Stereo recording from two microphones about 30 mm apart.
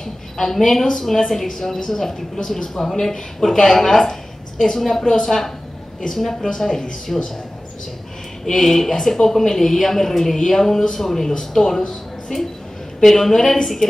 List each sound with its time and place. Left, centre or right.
0.0 s a sound: centre
1.0 s a woman's voice: centre
8.5 s a woman's voice: centre